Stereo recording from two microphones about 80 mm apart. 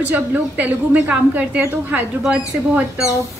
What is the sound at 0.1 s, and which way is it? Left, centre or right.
A woman's voice, centre.